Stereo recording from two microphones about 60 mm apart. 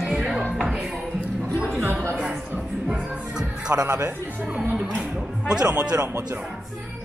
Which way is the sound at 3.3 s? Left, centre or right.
Centre.